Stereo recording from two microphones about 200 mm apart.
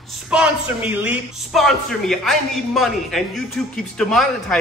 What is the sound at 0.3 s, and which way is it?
A man's voice, 5° right (ahead or behind).